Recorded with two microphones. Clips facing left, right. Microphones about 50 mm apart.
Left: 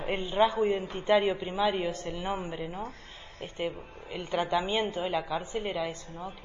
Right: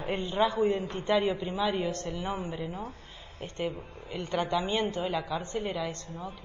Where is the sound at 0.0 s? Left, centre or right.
Left.